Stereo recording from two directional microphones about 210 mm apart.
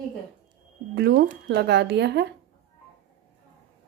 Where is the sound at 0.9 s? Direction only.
50° right (ahead or behind).